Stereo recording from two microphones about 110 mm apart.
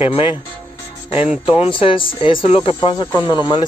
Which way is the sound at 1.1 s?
10° right (ahead or behind).